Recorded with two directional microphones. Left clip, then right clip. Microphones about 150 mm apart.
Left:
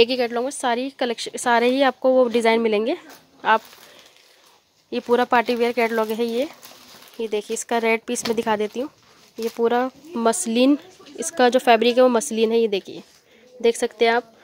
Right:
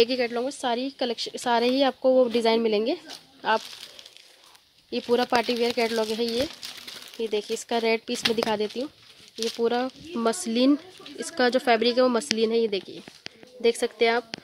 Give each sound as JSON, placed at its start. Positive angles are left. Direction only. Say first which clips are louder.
{"t": 0.0, "sound": "speech", "louder": "left 4 dB", "side_deg": 10}
{"t": 5.1, "sound": "speech", "louder": "left 5 dB", "side_deg": 10}